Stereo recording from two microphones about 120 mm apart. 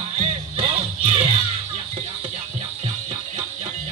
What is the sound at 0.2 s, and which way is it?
Music, 60° right (ahead or behind).